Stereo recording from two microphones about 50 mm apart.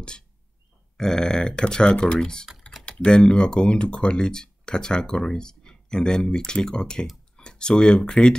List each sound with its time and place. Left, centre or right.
0.9 s speech: centre